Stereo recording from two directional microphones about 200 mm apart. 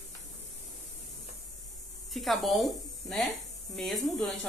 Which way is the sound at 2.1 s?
Centre (ahead or behind).